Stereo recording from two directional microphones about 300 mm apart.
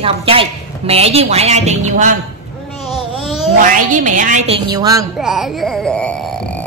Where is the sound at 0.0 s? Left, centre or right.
Centre.